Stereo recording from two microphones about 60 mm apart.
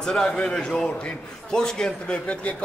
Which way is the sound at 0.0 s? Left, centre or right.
Centre.